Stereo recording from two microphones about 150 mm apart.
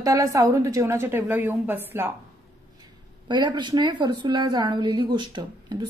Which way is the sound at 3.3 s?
30° right (ahead or behind).